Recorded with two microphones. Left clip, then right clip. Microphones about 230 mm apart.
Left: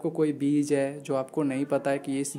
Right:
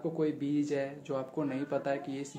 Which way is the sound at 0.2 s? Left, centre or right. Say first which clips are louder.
Left 7 dB; left.